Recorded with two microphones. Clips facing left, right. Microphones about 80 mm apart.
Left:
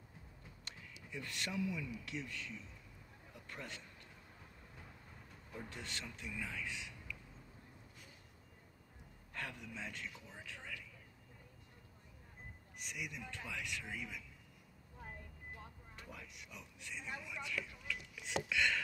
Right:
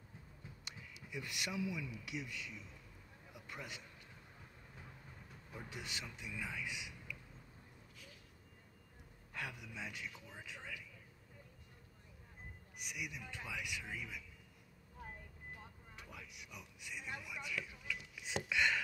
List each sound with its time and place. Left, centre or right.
0.7 s speech: centre
3.3 s a sound: centre
5.5 s speech: centre
9.3 s speech: centre
12.7 s speech: centre
16.0 s speech: centre